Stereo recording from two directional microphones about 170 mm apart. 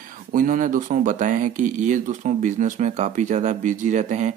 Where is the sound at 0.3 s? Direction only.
50° right (ahead or behind).